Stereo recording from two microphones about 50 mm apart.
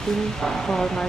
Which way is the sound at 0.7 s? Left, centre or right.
Centre.